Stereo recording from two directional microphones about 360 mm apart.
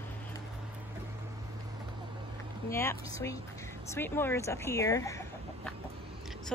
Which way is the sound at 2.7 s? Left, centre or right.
Centre.